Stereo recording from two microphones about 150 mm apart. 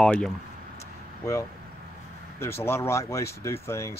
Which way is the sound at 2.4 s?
15° left (ahead or behind).